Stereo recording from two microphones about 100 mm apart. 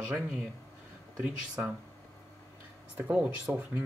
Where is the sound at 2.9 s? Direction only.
15° right (ahead or behind).